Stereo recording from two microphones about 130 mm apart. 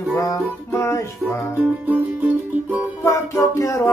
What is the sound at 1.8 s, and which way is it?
Music, 10° right (ahead or behind).